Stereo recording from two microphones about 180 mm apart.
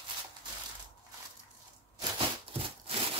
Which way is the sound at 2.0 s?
30° right (ahead or behind).